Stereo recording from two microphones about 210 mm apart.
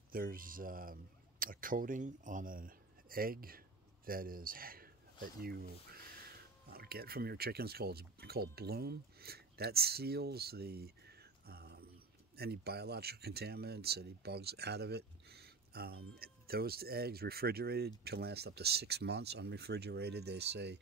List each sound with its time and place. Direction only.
0.1 s speech: 45° right (ahead or behind)